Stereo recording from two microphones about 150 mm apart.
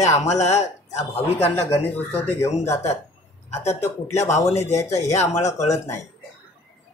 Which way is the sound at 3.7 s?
50° left (ahead or behind).